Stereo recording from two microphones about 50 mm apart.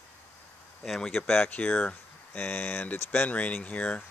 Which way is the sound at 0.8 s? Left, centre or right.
Centre.